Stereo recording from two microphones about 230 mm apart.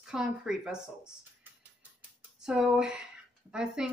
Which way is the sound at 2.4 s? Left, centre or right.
Centre.